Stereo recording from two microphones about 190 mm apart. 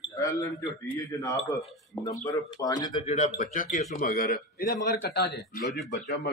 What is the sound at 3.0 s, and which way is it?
A man's voice, 35° left (ahead or behind).